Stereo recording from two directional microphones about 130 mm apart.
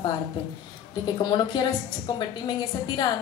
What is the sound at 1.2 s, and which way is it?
A woman's voice, 35° left (ahead or behind).